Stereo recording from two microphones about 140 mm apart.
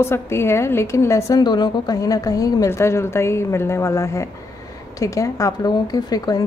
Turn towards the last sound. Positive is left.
turn(degrees=30)  # may be behind; listen again after turning